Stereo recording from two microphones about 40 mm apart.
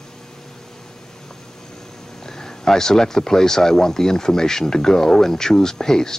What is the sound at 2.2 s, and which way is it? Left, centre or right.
Speech, centre.